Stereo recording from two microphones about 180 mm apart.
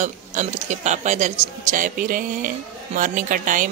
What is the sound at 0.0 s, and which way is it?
A man's voice, 45° right (ahead or behind).